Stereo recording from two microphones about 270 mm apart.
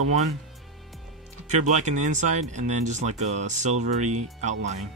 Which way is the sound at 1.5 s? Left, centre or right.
Right.